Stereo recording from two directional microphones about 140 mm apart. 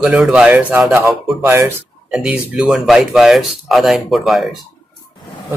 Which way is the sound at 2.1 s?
5° right (ahead or behind).